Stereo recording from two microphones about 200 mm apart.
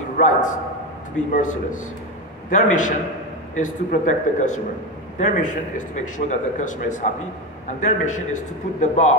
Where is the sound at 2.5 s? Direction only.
40° left (ahead or behind).